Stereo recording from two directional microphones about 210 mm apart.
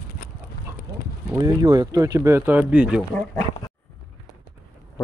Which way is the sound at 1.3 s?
15° right (ahead or behind).